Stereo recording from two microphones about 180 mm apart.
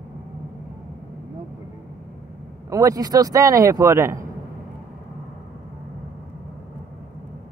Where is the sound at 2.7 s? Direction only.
20° right (ahead or behind).